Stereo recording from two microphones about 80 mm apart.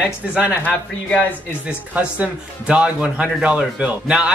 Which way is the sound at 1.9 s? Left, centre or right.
Centre.